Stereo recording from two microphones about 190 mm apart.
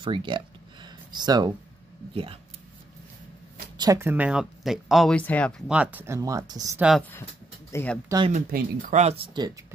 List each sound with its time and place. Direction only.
0.0 s speech: 25° right (ahead or behind)
0.8 s a sound: 20° right (ahead or behind)
3.7 s speech: 20° right (ahead or behind); by 5.5 s 10° left (ahead or behind)
5.7 s speech: 5° right (ahead or behind)
7.0 s speech: 10° left (ahead or behind)
8.3 s speech: 45° right (ahead or behind)
9.0 s speech: 30° right (ahead or behind)